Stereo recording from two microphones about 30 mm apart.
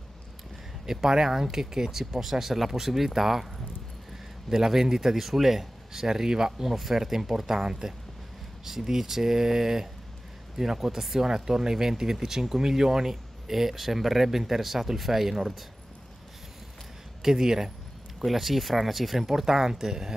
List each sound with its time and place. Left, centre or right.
0.8 s speech: centre
4.5 s speech: centre
6.0 s speech: centre
6.7 s speech: centre
17.2 s speech: centre
18.2 s speech: centre